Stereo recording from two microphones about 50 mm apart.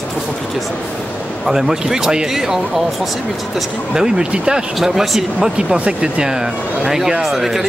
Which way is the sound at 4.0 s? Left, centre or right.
Centre.